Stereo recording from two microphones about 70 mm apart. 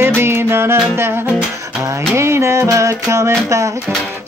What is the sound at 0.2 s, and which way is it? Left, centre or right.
Music, right.